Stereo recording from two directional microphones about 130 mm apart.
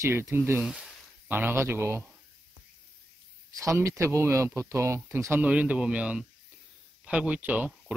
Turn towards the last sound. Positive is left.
turn(degrees=-10)  # may be behind; listen again after turning